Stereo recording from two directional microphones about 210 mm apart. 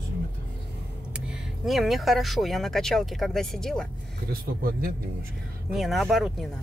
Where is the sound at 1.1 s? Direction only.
5° right (ahead or behind).